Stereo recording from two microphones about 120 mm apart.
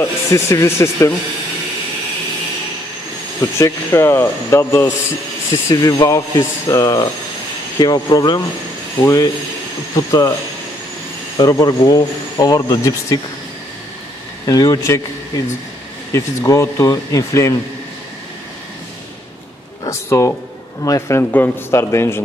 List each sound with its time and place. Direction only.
0.0 s speech: 25° left (ahead or behind)
3.3 s speech: 25° left (ahead or behind)
11.3 s speech: 30° left (ahead or behind)
14.4 s speech: 30° left (ahead or behind)
16.1 s speech: 25° left (ahead or behind)
19.9 s speech: 25° left (ahead or behind)